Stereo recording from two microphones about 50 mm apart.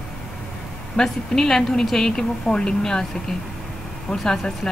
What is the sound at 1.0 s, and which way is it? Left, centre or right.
A woman's voice, centre.